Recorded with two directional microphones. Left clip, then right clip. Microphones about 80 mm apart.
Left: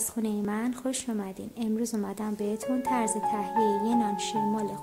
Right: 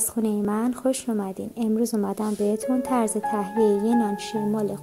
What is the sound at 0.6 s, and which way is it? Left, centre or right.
Speech, right.